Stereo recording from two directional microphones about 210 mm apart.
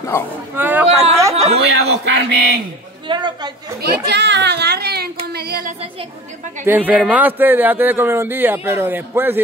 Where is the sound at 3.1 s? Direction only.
20° right (ahead or behind).